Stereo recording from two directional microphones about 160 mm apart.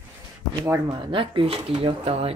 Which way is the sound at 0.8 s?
30° right (ahead or behind).